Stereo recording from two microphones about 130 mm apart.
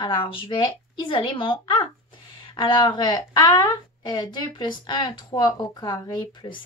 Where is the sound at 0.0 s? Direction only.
40° left (ahead or behind).